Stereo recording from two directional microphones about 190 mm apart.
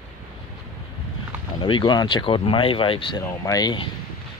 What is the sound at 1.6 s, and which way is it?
Speech, 25° left (ahead or behind).